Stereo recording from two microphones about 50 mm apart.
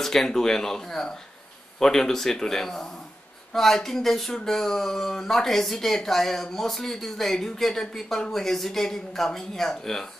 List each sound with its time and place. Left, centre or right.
0.0 s speech: centre